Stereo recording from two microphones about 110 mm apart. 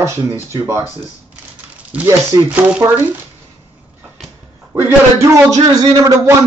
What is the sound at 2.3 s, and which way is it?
Speech, 35° right (ahead or behind).